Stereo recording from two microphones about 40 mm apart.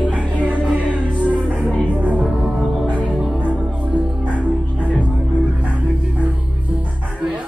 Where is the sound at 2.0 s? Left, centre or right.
Right.